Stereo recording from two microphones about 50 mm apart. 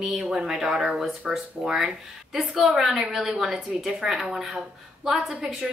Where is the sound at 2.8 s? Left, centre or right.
Centre.